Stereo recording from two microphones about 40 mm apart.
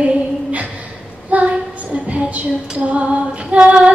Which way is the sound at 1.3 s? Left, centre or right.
Right.